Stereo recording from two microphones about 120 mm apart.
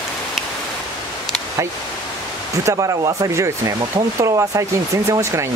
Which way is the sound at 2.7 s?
30° right (ahead or behind).